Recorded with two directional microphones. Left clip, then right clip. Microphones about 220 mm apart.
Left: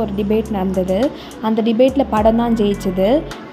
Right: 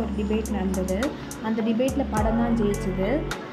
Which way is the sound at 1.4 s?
30° left (ahead or behind).